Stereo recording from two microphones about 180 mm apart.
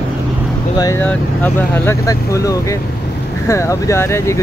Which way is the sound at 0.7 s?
20° left (ahead or behind).